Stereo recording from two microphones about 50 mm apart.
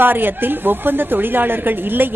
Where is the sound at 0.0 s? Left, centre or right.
Right.